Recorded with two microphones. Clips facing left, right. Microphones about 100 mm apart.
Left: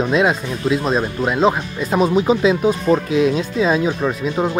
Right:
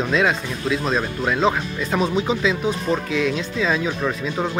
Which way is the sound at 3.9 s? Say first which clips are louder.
Left 4 dB; 15° left (ahead or behind).